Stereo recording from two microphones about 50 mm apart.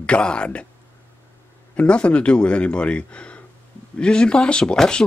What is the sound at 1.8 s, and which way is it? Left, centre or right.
Speech, left.